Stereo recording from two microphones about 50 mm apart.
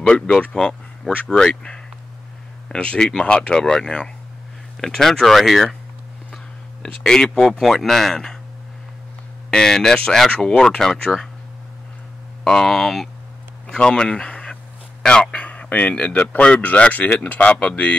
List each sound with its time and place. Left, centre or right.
0.0 s speech: left
0.6 s a sound: centre
1.2 s speech: centre
6.8 s speech: centre
9.5 s speech: centre
10.3 s speech: left
10.6 s speech: centre
12.4 s speech: centre
13.7 s speech: centre